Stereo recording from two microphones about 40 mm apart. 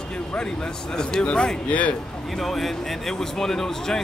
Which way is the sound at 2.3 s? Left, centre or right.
Centre.